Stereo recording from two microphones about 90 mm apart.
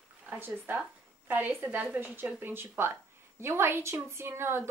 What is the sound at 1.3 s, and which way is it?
A woman's voice, 15° right (ahead or behind).